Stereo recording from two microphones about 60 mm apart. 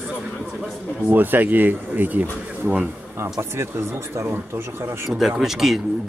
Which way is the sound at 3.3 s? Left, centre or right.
Right.